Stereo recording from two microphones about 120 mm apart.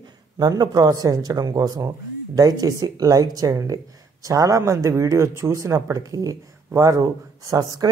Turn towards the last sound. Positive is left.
turn(degrees=-30)  # may be behind; listen again after turning